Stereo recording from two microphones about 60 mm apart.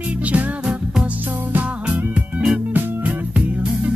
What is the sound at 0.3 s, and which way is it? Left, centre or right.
Music, right.